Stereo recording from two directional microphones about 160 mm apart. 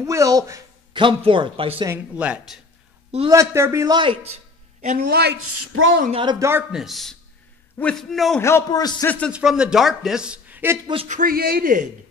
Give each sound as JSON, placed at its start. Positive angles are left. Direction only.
{"t": 0.0, "sound": "a man's voice", "side_deg": -20}
{"t": 1.0, "sound": "speech", "side_deg": -30}
{"t": 1.9, "sound": "speech", "side_deg": -10}
{"t": 3.3, "sound": "a man's voice", "side_deg": -20}
{"t": 4.8, "sound": "speech", "side_deg": -70}
{"t": 6.2, "sound": "speech", "side_deg": -15}
{"t": 6.7, "sound": "a man's voice", "side_deg": 0}
{"t": 8.4, "sound": "a man's voice", "side_deg": 15}
{"t": 9.0, "sound": "speech", "side_deg": 10}
{"t": 9.3, "sound": "a man's voice", "side_deg": -5}
{"t": 11.1, "sound": "speech", "side_deg": -60}